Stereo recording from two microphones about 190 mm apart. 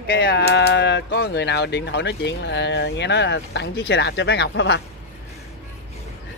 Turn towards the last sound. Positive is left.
turn(degrees=65)  # may be behind; listen again after turning